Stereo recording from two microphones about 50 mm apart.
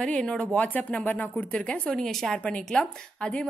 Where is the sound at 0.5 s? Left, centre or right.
Left.